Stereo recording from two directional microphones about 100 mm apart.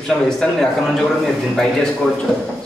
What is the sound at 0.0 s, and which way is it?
A man's voice, 5° left (ahead or behind).